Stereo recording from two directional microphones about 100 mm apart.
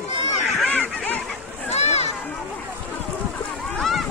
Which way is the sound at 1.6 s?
90° left.